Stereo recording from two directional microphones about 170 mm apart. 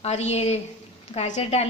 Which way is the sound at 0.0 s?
40° left (ahead or behind).